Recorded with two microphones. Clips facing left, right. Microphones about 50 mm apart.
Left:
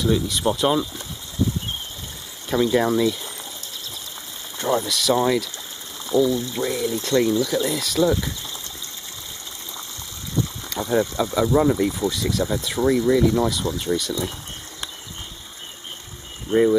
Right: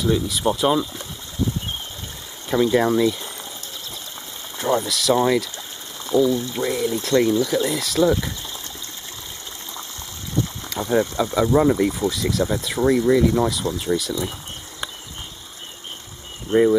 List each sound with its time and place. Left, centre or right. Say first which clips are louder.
0.0 s speech: even; centre
2.5 s speech: right 1 dB; centre
4.6 s speech: right 1 dB; centre
10.8 s speech: right 1 dB; right
11.3 s speech: right 1 dB; centre